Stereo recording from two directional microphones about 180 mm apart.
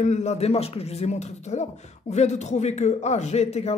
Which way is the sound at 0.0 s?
40° left (ahead or behind).